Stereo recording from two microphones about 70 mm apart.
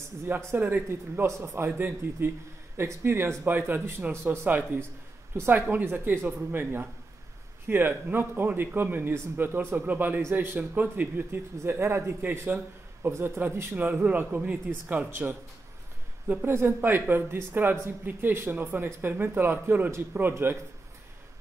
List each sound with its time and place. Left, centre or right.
0.3 s a man's voice: right
1.2 s a man's voice: right
16.5 s a man's voice: right